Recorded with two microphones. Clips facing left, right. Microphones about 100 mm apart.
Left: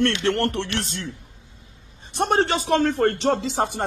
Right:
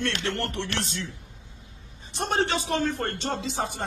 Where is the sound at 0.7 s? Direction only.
55° left (ahead or behind).